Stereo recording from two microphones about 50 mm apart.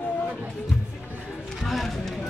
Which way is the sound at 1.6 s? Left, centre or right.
Centre.